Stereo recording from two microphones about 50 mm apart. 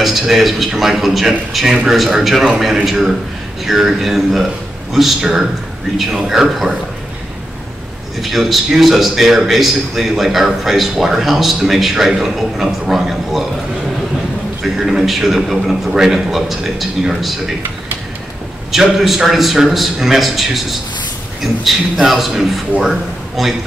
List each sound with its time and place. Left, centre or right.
0.0 s a man's voice: centre
8.2 s a man's voice: centre
14.6 s a man's voice: centre
18.7 s a man's voice: centre
21.6 s a man's voice: centre